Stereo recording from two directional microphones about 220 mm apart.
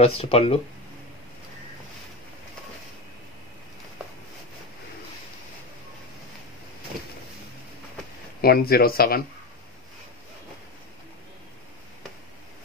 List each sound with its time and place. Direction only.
0.0 s speech: 25° left (ahead or behind)
8.4 s speech: 45° left (ahead or behind)